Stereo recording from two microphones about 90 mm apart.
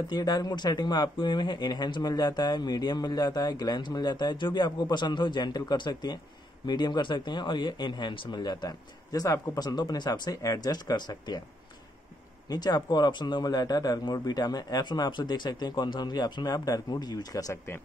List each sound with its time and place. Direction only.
0.1 s speech: 45° left (ahead or behind)
12.4 s speech: 50° left (ahead or behind)